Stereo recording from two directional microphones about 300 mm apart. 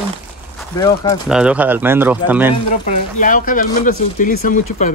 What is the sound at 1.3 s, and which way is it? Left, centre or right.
Speech, centre.